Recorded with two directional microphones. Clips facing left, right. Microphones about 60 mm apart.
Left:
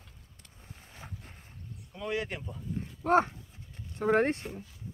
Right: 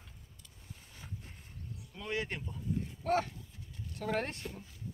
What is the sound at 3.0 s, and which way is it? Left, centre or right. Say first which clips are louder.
Speech: left 8 dB; left.